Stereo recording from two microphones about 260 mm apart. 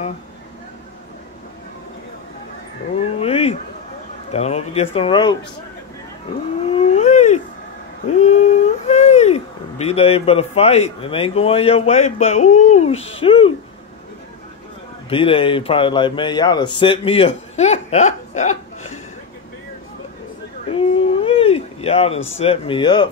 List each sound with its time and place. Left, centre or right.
3.0 s a sound: left
4.3 s speech: left
6.7 s whale vocalization: left
8.2 s speech: left
15.0 s speech: left
21.2 s a sound: left
22.4 s speech: left